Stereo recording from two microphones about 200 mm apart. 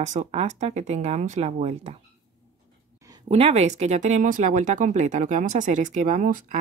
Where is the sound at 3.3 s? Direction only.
30° right (ahead or behind).